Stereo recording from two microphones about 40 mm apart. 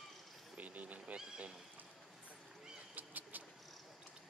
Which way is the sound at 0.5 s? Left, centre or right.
Right.